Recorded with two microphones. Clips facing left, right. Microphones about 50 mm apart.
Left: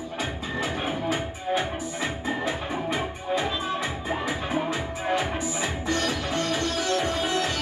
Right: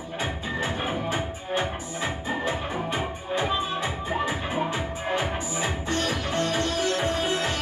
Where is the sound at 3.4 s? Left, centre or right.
Right.